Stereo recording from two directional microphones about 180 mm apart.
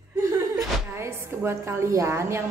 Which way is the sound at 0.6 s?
15° right (ahead or behind).